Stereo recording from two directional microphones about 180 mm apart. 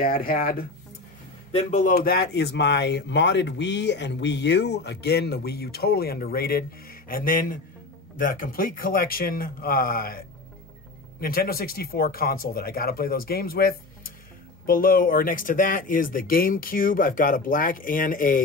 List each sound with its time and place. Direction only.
0.0 s speech: 55° left (ahead or behind)
1.5 s speech: 40° left (ahead or behind)